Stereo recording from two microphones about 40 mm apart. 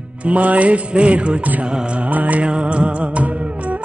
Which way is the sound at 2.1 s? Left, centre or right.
Right.